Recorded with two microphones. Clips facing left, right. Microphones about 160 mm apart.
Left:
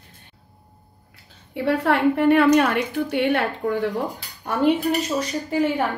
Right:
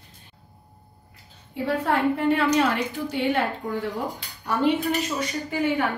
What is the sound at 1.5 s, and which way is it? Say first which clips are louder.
A woman's voice: left 3 dB; 75° left (ahead or behind).